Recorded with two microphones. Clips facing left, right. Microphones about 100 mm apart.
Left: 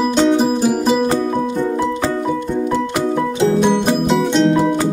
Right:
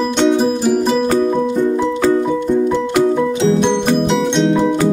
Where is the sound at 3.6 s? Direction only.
5° left (ahead or behind).